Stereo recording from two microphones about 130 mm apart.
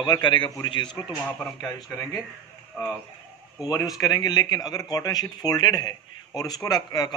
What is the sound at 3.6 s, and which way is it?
Speech, 30° left (ahead or behind).